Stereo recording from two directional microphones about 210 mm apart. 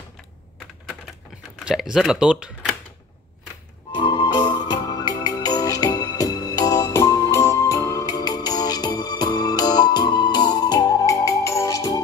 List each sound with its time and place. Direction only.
1.6 s speech: 5° right (ahead or behind)
4.0 s music: 20° left (ahead or behind)